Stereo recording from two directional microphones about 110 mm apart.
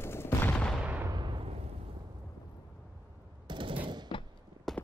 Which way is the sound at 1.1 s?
45° right (ahead or behind).